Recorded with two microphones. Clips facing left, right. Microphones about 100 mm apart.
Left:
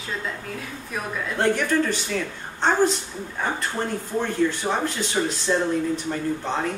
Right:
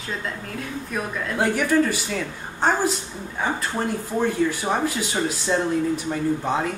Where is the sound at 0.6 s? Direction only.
5° right (ahead or behind).